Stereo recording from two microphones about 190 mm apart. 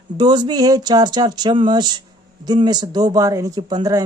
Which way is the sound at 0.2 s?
25° right (ahead or behind).